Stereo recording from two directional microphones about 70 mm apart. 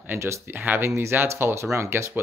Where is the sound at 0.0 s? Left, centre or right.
Right.